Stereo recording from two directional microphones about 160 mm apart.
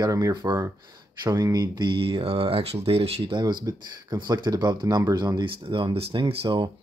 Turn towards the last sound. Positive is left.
turn(degrees=-35)  # may be behind; listen again after turning